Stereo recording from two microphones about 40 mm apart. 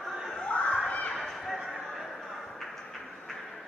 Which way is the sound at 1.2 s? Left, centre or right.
Centre.